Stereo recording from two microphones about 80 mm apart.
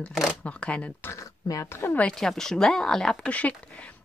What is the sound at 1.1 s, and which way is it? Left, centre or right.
Speech, left.